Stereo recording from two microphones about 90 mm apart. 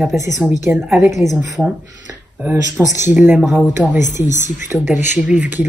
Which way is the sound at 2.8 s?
20° right (ahead or behind).